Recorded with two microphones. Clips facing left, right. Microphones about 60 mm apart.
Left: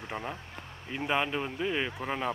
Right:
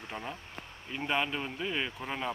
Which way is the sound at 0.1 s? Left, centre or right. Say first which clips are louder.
Left 3 dB; centre.